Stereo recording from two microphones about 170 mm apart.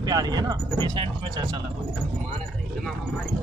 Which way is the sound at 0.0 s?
20° right (ahead or behind).